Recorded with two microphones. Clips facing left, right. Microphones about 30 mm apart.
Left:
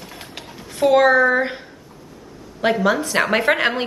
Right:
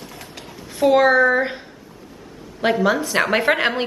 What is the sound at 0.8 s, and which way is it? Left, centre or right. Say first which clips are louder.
Speech: even; centre.